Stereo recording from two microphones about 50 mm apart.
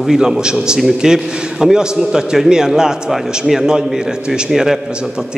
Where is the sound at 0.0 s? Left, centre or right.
Centre.